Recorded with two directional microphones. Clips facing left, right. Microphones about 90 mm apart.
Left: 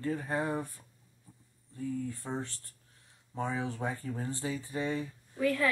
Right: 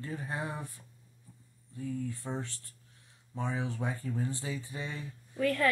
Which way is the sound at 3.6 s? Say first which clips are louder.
Left 1 dB; 35° left (ahead or behind).